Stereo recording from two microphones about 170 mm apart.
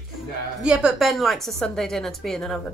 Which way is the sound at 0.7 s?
5° right (ahead or behind).